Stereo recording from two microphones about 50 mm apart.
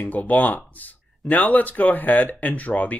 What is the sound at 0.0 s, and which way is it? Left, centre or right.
Speech, left.